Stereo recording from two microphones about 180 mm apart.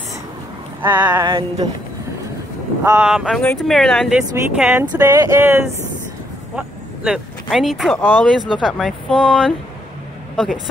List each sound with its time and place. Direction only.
0.8 s speech: 10° right (ahead or behind)
1.2 s a sound: 20° right (ahead or behind)
2.8 s speech: 10° right (ahead or behind)
4.8 s speech: 20° right (ahead or behind)
6.5 s a sound: 5° right (ahead or behind)
7.4 s speech: centre (ahead or behind)